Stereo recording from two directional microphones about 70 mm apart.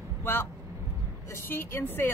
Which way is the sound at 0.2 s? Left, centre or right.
Left.